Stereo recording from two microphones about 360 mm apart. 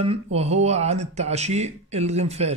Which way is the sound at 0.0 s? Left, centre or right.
Centre.